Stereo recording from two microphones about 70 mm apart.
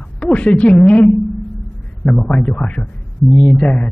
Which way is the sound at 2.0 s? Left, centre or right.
Centre.